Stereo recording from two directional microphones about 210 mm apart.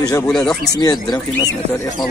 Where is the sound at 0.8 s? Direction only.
20° left (ahead or behind).